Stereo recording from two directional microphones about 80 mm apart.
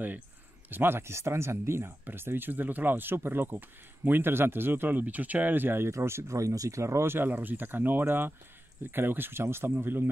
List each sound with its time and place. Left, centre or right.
0.7 s speech: right